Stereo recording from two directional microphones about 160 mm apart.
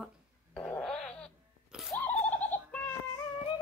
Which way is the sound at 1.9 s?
10° left (ahead or behind).